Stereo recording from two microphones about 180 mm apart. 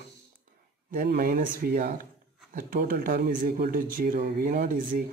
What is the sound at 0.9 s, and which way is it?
Speech, 50° right (ahead or behind).